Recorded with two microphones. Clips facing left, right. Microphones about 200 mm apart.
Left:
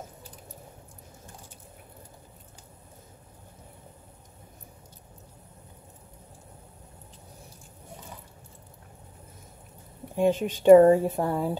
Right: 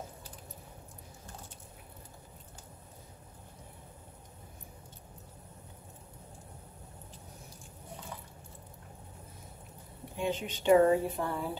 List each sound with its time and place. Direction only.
10.1 s speech: 45° left (ahead or behind)